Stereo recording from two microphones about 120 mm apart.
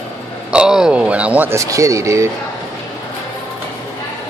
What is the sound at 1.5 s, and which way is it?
Speech, 25° right (ahead or behind).